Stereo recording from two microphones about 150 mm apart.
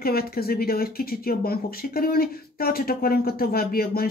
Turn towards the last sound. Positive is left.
turn(degrees=85)